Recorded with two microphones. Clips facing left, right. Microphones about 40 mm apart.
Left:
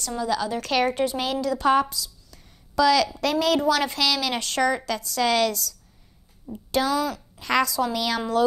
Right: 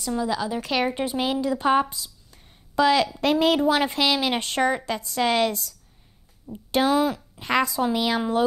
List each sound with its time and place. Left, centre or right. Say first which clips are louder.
0.2 s a woman's voice: left 4 dB; centre